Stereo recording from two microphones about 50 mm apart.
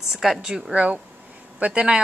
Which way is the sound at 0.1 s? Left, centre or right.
Centre.